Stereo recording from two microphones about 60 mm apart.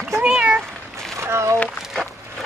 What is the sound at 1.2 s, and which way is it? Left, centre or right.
Speech, right.